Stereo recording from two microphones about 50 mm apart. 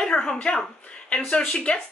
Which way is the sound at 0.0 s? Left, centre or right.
Centre.